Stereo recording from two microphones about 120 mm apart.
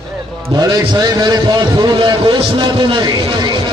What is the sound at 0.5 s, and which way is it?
A man's voice, 35° right (ahead or behind).